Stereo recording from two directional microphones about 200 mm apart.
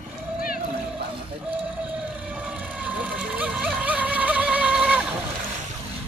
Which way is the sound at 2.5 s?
5° right (ahead or behind).